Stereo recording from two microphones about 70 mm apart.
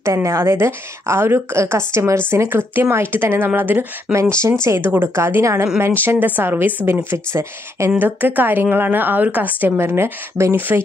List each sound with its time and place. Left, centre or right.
0.0 s a woman's voice: right
4.1 s speech: centre
4.6 s a woman's voice: right
8.0 s a woman's voice: right